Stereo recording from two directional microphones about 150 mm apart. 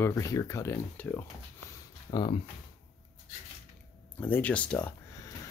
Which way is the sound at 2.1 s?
30° left (ahead or behind).